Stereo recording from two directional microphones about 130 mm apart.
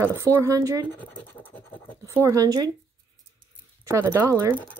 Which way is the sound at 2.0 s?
20° right (ahead or behind).